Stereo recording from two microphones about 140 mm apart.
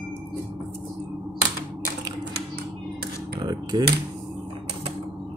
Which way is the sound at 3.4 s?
30° right (ahead or behind).